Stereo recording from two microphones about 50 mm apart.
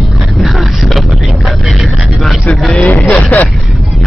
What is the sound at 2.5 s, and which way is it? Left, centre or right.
Vehicle, centre.